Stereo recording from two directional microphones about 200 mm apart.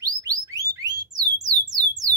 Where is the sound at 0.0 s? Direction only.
15° right (ahead or behind).